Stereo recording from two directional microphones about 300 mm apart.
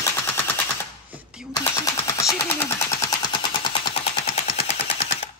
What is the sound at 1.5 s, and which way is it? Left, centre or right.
Machine gun, centre.